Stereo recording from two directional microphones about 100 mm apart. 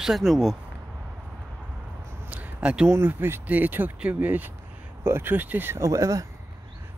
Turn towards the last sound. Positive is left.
turn(degrees=-30)  # may be behind; listen again after turning